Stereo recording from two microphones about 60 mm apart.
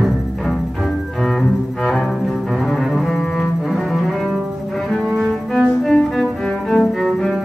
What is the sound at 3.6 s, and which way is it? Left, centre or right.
Cello, centre.